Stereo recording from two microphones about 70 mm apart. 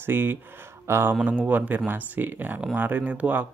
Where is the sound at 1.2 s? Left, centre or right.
Right.